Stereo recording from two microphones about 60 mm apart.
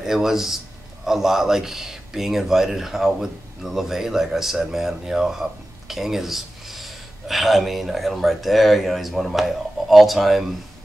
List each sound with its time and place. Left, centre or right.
0.0 s speech: centre